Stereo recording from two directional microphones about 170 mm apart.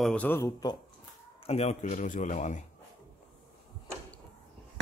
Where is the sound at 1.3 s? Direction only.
35° left (ahead or behind).